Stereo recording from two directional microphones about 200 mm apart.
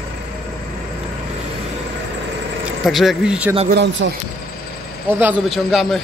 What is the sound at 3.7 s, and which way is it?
Speech, 60° right (ahead or behind).